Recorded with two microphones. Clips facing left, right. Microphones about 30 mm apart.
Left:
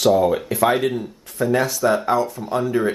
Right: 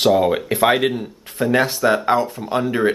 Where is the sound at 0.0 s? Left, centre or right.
Right.